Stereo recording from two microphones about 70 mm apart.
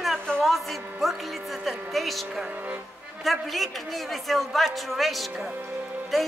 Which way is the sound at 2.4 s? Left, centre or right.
Right.